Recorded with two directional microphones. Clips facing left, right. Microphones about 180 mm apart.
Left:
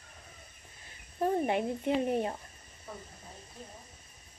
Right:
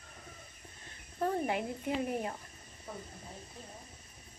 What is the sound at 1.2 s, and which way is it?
Speech, 20° left (ahead or behind).